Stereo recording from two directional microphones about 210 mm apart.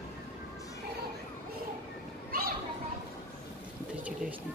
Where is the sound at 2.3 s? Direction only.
45° right (ahead or behind).